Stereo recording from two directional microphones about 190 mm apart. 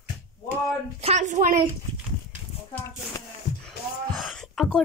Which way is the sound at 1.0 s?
35° right (ahead or behind).